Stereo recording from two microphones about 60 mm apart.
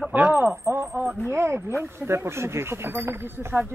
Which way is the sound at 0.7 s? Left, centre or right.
Right.